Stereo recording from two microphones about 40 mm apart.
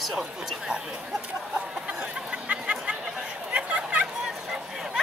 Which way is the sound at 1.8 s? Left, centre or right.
Right.